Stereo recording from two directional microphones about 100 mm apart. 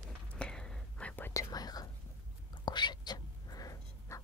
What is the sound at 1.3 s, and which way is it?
Whispering, 40° left (ahead or behind).